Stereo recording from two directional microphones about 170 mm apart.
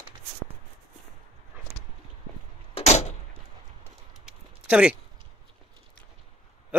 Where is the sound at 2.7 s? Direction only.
40° left (ahead or behind).